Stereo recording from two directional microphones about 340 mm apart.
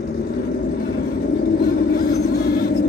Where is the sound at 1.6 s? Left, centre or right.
Left.